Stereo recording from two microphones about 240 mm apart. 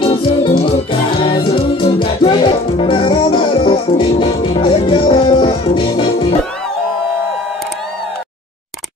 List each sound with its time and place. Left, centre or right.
0.0 s music: left